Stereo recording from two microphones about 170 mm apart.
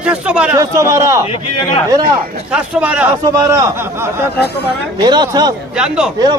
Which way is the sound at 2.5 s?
5° right (ahead or behind).